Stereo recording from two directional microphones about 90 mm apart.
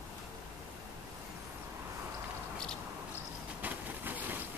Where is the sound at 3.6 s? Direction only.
20° right (ahead or behind).